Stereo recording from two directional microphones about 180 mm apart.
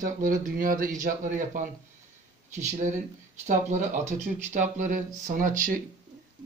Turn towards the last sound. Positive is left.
turn(degrees=-50)  # may be behind; listen again after turning